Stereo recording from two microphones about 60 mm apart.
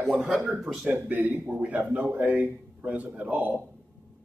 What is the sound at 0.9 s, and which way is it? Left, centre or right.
A man's voice, right.